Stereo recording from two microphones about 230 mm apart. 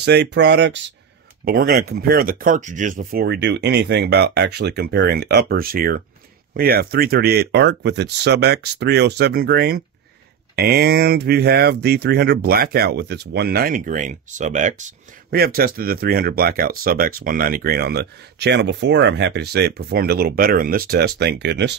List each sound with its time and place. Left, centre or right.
0.0 s speech: right
1.4 s speech: right